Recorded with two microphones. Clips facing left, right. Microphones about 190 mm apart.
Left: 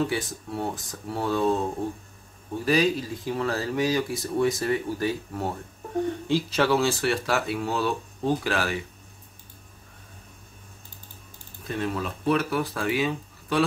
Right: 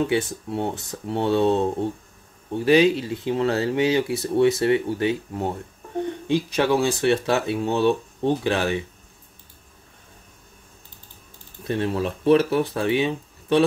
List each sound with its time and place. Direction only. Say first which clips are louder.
0.0 s speech: right 5 dB; 25° right (ahead or behind)
11.6 s speech: right 5 dB; 25° right (ahead or behind)